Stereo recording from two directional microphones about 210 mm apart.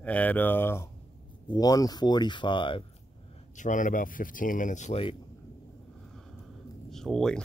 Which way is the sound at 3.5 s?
35° left (ahead or behind).